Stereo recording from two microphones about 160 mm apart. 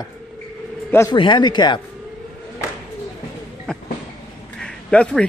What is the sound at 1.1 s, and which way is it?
Speech, 30° left (ahead or behind).